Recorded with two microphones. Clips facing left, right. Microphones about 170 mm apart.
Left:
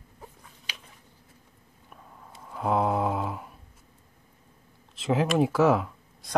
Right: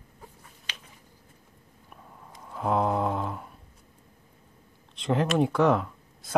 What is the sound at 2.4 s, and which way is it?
Mantra, centre (ahead or behind).